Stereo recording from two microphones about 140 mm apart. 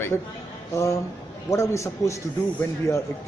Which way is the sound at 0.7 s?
20° left (ahead or behind).